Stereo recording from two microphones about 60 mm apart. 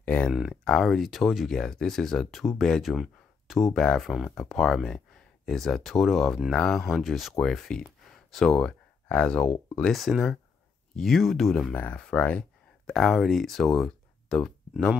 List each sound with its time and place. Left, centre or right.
0.0 s speech: left
0.7 s speech: centre
3.7 s speech: centre
4.0 s speech: centre
4.4 s speech: centre
6.5 s speech: centre
6.8 s speech: centre
9.9 s speech: centre
11.7 s speech: left
12.0 s a sound: centre
12.9 s speech: centre